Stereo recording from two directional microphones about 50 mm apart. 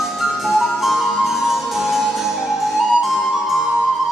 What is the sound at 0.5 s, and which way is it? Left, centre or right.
Music, centre.